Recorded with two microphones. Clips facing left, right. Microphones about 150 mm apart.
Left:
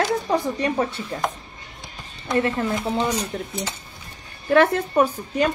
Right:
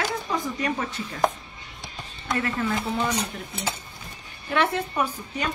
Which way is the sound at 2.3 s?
30° left (ahead or behind).